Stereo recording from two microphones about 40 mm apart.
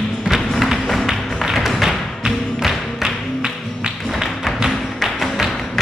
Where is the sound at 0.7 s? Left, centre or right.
Centre.